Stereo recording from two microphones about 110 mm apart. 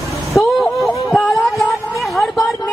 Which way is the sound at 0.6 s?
5° left (ahead or behind).